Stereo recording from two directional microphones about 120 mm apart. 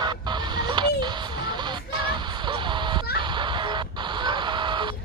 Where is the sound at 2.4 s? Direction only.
40° right (ahead or behind).